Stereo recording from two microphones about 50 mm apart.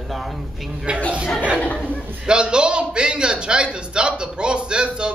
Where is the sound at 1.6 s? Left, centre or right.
Left.